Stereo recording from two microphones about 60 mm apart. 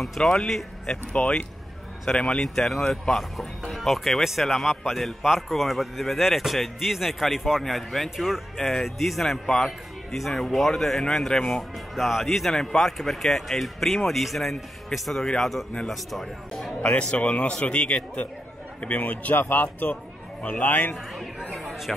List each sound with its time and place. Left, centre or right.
0.0 s a man's voice: centre
0.8 s a man's voice: centre
16.8 s a man's voice: left
21.1 s speech: centre